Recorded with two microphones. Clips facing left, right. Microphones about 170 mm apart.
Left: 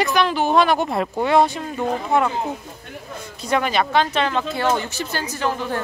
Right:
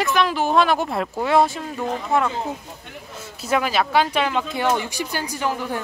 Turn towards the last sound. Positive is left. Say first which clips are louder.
# left 1 dB
turn(degrees=-15)  # may be behind; listen again after turning